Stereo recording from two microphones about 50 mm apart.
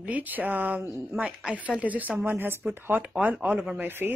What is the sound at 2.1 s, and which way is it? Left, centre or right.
A woman's voice, right.